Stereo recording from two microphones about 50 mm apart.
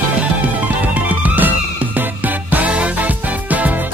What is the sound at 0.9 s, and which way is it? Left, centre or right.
Music, right.